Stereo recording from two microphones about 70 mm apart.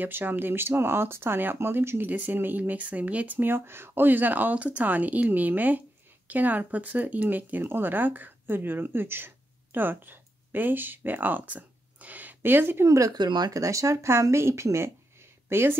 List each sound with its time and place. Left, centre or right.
0.0 s speech: right
12.8 s speech: right
13.1 s speech: right
13.5 s speech: right
15.5 s a woman's voice: right